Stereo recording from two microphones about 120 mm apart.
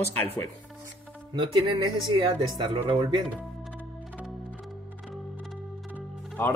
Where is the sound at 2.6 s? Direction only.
40° right (ahead or behind).